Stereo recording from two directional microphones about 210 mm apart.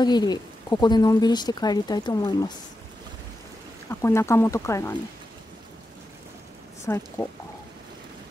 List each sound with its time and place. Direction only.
0.0 s speech: 20° left (ahead or behind)
3.9 s speech: 10° left (ahead or behind)
6.9 s speech: 10° left (ahead or behind)